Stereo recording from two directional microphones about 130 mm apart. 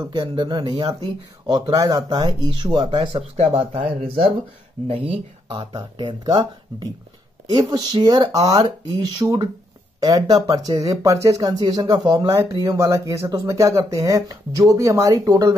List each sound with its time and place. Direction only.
0.0 s speech: 35° right (ahead or behind)
3.0 s speech: 45° right (ahead or behind)
12.6 s speech: 20° right (ahead or behind)